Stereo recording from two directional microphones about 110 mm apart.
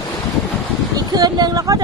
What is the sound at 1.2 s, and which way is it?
Speech, 35° right (ahead or behind).